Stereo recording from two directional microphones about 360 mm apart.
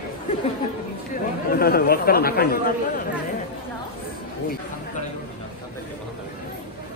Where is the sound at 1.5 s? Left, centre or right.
Left.